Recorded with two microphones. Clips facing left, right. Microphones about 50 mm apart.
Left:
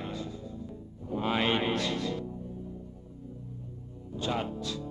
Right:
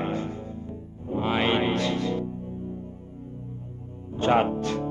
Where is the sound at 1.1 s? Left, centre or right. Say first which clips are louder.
Right 4 dB; right.